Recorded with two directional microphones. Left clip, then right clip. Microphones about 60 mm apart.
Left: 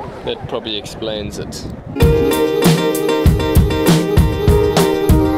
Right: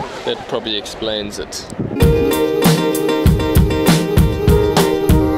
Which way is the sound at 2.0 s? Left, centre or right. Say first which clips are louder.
Left 1 dB; right.